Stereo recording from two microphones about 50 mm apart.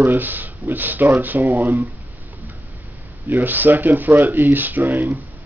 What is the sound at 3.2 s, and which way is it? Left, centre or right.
Speech, right.